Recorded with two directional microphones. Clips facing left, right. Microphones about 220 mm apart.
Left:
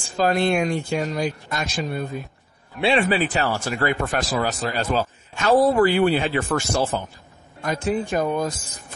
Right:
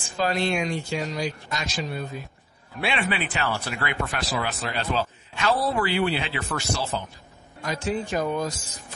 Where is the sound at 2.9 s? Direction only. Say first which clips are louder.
Left 7 dB; 40° left (ahead or behind).